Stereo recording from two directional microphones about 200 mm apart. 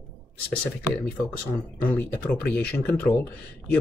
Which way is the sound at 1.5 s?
5° left (ahead or behind).